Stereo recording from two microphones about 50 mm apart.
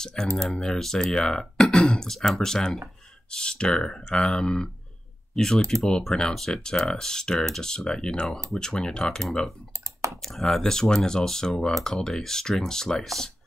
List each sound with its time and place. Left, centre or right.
0.0 s speech: centre